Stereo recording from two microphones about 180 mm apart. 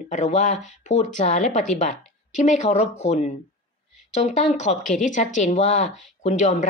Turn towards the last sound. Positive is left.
turn(degrees=40)  # may be behind; listen again after turning